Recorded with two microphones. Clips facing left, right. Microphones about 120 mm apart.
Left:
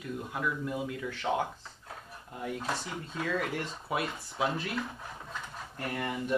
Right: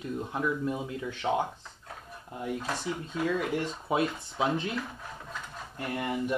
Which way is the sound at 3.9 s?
20° right (ahead or behind).